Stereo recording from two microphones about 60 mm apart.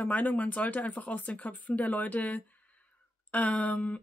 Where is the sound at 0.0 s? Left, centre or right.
Left.